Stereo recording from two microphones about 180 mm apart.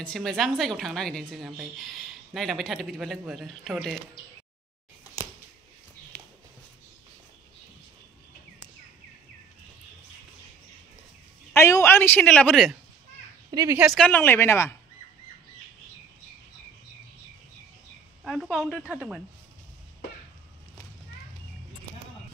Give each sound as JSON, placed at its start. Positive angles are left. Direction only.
{"t": 0.0, "sound": "a woman's voice", "side_deg": 5}
{"t": 11.5, "sound": "a man's voice", "side_deg": 15}
{"t": 13.5, "sound": "a woman's voice", "side_deg": -20}
{"t": 13.9, "sound": "a man's voice", "side_deg": 10}
{"t": 18.2, "sound": "a woman's voice", "side_deg": 0}